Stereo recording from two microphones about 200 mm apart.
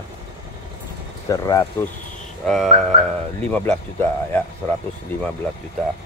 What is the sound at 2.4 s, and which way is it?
Speech, centre (ahead or behind).